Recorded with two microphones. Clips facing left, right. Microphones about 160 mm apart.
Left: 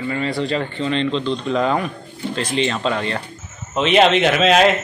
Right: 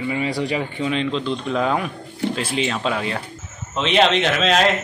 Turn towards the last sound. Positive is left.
turn(degrees=5)  # may be behind; listen again after turning